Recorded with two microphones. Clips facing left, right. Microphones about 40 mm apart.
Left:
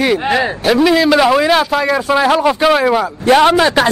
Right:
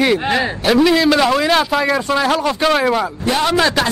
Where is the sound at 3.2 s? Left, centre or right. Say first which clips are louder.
Left 10 dB; left.